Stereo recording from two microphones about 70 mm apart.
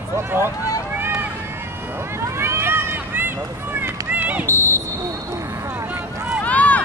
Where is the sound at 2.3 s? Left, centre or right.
Right.